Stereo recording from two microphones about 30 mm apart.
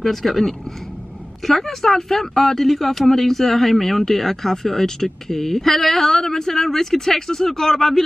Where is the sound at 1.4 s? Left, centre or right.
Centre.